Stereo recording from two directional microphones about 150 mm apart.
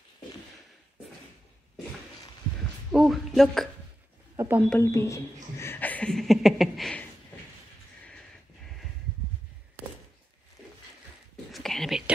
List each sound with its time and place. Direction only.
2.9 s speech: centre (ahead or behind)
4.4 s speech: 15° right (ahead or behind)
4.6 s speech: 15° left (ahead or behind)
11.5 s whispering: centre (ahead or behind)